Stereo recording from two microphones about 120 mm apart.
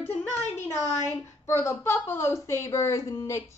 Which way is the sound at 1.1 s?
25° left (ahead or behind).